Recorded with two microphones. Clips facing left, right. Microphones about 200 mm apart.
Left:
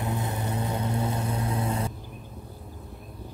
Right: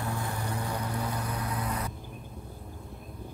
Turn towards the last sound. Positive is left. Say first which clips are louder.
# left 5 dB
turn(degrees=25)  # may be behind; listen again after turning